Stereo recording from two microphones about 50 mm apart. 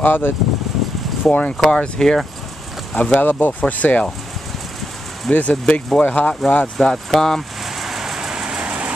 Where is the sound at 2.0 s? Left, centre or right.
Centre.